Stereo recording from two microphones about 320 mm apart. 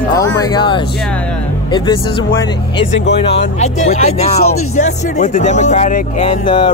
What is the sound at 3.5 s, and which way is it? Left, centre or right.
Speech, centre.